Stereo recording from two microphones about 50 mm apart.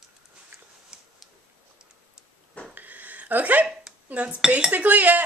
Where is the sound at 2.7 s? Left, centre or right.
Right.